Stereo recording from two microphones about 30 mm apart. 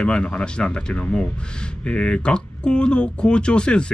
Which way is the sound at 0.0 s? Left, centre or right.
Left.